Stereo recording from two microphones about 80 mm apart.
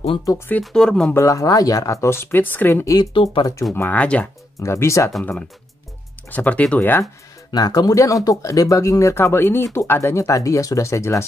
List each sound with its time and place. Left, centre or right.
0.6 s speech: centre
1.1 s speech: left
3.0 s speech: left
3.7 s speech: left
4.6 s speech: left
6.3 s speech: centre
7.5 s speech: left